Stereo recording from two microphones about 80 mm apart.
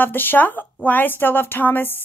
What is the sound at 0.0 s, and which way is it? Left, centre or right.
Speech, left.